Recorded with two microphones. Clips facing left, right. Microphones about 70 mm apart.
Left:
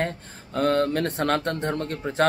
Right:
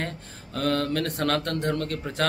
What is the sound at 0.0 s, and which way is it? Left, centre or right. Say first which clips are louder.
Speech: left 5 dB; left.